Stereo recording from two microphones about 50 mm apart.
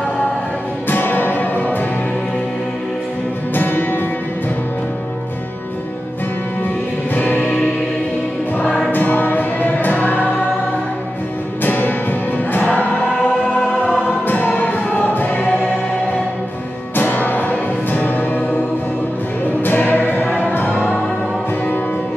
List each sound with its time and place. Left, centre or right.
0.8 s music: left
3.5 s music: left
7.2 s music: left
8.9 s music: left
11.6 s music: left
13.9 s choir: left
16.9 s music: left
19.6 s music: left